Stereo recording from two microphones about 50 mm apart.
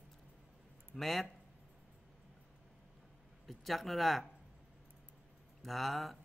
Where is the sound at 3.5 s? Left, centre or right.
Centre.